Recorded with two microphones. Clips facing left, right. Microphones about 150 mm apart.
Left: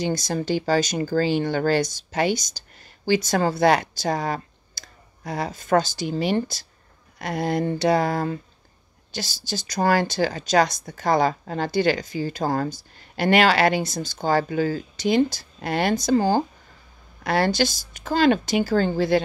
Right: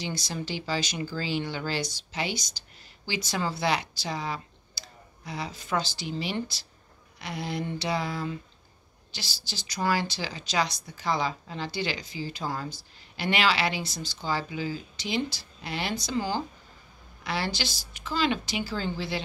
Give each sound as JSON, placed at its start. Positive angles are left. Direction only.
{"t": 0.0, "sound": "speech", "side_deg": 45}